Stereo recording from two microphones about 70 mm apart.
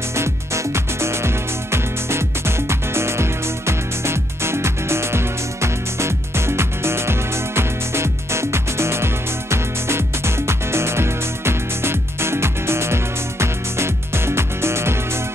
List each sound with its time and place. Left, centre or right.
0.1 s music: right